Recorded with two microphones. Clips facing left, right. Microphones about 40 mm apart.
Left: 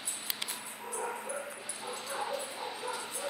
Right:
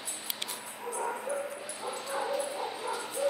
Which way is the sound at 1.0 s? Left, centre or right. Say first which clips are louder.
Right 4 dB; centre.